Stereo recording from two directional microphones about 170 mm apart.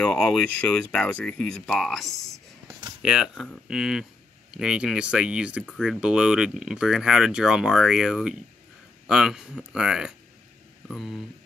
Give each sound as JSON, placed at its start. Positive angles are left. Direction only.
{"t": 0.0, "sound": "speech", "side_deg": 5}